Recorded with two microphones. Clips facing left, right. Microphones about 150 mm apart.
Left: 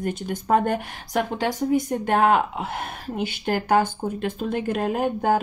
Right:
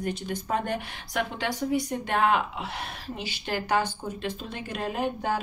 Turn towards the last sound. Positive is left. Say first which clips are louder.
# left 7 dB
turn(degrees=50)  # may be behind; listen again after turning